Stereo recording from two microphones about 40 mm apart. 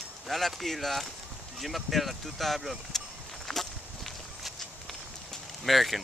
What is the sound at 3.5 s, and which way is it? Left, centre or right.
Walk, centre.